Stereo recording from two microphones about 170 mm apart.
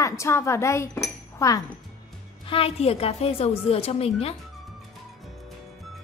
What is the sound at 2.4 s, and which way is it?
A woman's voice, 35° left (ahead or behind).